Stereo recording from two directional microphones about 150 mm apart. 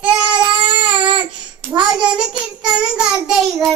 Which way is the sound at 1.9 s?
5° right (ahead or behind).